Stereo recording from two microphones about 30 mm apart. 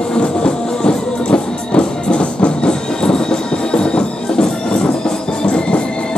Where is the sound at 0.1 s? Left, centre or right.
Left.